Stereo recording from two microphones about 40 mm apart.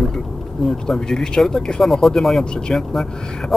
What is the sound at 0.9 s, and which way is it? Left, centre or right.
Speech, centre.